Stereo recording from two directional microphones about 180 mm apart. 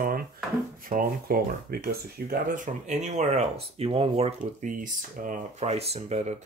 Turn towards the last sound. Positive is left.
turn(degrees=-35)  # may be behind; listen again after turning